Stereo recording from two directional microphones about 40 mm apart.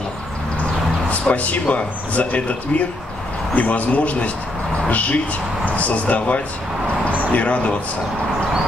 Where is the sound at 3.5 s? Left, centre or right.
Left.